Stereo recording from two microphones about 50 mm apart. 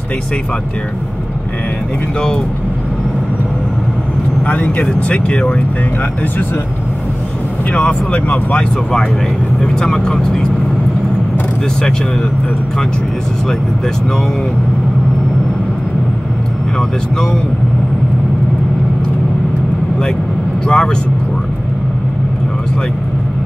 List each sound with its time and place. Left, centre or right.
2.1 s speech: centre
4.4 s speech: left
7.7 s speech: left
9.6 s speech: centre
16.7 s speech: centre
20.6 s speech: centre